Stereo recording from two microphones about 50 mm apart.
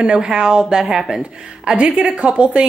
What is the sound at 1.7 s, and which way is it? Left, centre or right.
Speech, right.